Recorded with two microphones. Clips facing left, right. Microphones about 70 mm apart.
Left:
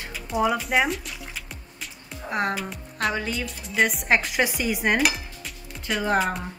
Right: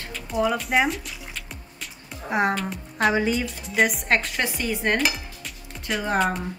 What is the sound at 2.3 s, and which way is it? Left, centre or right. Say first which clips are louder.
Speech: right 3 dB; centre.